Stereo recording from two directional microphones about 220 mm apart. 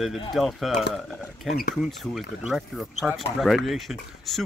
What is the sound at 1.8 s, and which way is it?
Speech, centre (ahead or behind).